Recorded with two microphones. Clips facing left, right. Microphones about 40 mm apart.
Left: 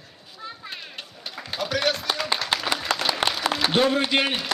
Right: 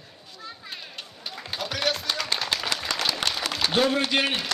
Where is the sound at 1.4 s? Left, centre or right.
Centre.